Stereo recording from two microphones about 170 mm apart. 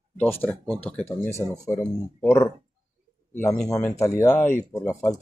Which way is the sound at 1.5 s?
20° left (ahead or behind).